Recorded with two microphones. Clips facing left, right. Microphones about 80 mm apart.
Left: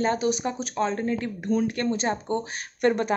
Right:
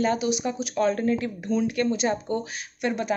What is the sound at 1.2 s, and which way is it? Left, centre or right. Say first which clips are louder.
Speech: even; left.